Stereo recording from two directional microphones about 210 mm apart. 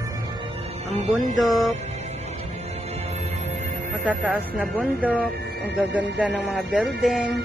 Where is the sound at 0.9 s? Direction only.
35° right (ahead or behind).